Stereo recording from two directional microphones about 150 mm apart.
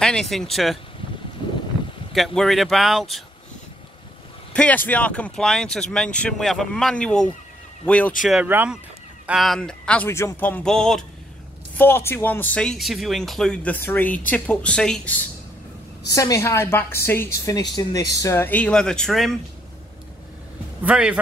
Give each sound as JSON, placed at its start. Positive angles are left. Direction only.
{"t": 0.0, "sound": "speech", "side_deg": 5}
{"t": 2.1, "sound": "speech", "side_deg": 0}
{"t": 4.6, "sound": "speech", "side_deg": 10}
{"t": 8.5, "sound": "speech", "side_deg": -15}
{"t": 9.2, "sound": "speech", "side_deg": -5}
{"t": 10.0, "sound": "speech", "side_deg": 20}
{"t": 16.1, "sound": "speech", "side_deg": 20}
{"t": 17.6, "sound": "speech", "side_deg": 25}
{"t": 20.8, "sound": "speech", "side_deg": -5}